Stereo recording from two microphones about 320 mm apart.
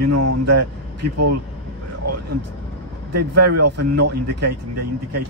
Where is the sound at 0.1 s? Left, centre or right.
Right.